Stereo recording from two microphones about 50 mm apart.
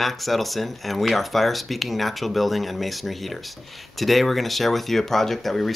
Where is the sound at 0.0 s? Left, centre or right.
Centre.